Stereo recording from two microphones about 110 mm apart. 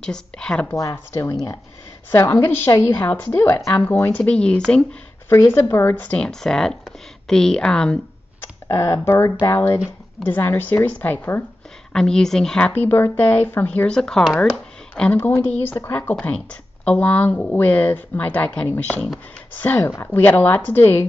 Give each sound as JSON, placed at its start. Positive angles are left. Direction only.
{"t": 0.0, "sound": "a woman's voice", "side_deg": 5}
{"t": 0.7, "sound": "a woman's voice", "side_deg": 25}
{"t": 4.2, "sound": "a woman's voice", "side_deg": 10}
{"t": 5.5, "sound": "a woman's voice", "side_deg": 20}
{"t": 8.6, "sound": "a woman's voice", "side_deg": 30}
{"t": 11.9, "sound": "a woman's voice", "side_deg": 5}